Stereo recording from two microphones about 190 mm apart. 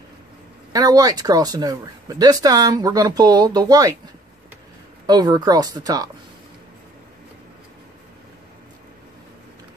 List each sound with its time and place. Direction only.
0.7 s speech: 20° right (ahead or behind)
5.0 s speech: 20° right (ahead or behind)